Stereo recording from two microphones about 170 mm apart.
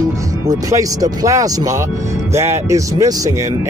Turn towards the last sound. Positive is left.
turn(degrees=-20)  # may be behind; listen again after turning